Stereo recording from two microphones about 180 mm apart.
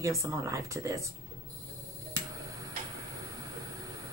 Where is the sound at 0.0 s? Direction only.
15° right (ahead or behind).